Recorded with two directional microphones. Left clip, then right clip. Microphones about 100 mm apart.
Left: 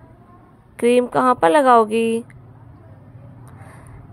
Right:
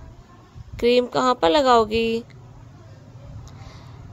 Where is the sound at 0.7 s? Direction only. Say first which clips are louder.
Left 3 dB; 15° left (ahead or behind).